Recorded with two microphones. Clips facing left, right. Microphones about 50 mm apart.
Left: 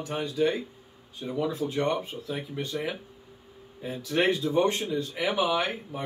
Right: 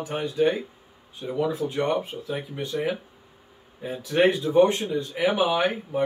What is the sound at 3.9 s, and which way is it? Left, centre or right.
Speech, centre.